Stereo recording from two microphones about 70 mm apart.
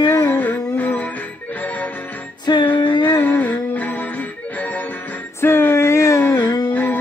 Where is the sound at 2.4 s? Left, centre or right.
Left.